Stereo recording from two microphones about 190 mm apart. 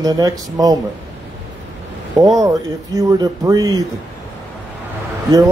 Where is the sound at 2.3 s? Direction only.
20° right (ahead or behind).